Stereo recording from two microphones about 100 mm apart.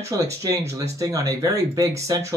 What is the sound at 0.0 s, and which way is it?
Speech, 35° right (ahead or behind).